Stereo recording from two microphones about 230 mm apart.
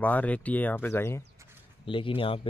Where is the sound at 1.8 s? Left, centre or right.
Left.